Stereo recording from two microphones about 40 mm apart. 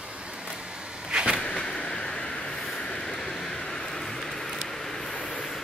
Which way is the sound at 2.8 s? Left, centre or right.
Centre.